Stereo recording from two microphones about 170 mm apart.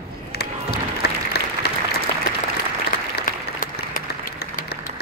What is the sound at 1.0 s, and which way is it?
Applause, 70° left (ahead or behind).